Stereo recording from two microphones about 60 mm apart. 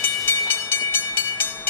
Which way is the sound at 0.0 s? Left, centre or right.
Left.